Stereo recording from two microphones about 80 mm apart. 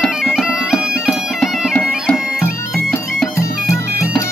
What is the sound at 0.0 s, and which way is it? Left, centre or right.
Bagpipes, centre.